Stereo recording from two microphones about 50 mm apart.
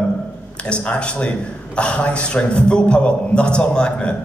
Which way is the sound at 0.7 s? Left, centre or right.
Left.